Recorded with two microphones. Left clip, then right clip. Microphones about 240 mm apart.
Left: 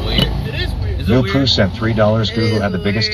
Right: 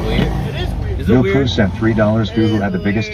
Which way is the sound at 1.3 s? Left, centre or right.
Left.